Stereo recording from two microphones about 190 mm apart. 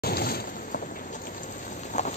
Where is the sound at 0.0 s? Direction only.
55° left (ahead or behind).